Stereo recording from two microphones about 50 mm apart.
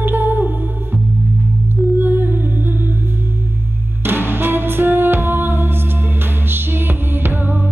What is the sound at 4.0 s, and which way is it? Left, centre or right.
Music, right.